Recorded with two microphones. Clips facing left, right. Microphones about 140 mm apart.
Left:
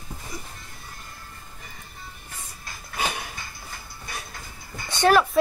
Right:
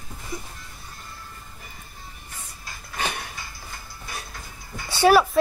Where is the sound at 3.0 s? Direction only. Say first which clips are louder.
Left 1 dB; 10° left (ahead or behind).